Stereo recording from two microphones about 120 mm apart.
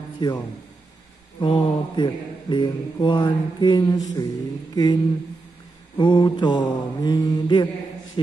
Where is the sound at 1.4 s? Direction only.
40° left (ahead or behind).